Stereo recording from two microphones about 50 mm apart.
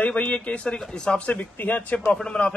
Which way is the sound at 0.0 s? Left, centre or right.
Left.